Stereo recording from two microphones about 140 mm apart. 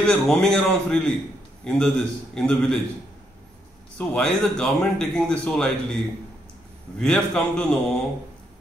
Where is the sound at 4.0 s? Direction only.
5° left (ahead or behind).